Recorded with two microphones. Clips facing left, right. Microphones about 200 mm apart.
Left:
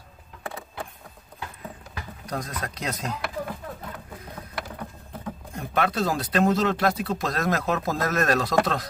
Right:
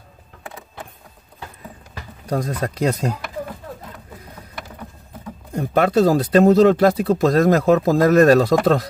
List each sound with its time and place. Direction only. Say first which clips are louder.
2.3 s speech: right 10 dB; 45° right (ahead or behind)
5.5 s speech: right 9 dB; 40° right (ahead or behind)